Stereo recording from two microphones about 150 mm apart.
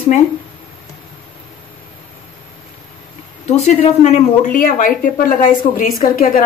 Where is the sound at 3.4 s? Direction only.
45° left (ahead or behind).